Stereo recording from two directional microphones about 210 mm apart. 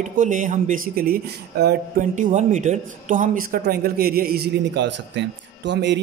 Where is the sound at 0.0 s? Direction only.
40° right (ahead or behind).